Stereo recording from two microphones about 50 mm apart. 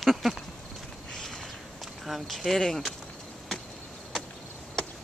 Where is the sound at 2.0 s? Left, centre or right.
Centre.